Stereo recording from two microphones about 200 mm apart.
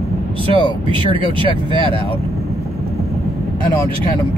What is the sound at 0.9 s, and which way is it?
Speech, 25° right (ahead or behind).